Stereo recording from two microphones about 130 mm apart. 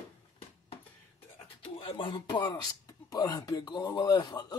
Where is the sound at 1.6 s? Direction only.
45° left (ahead or behind).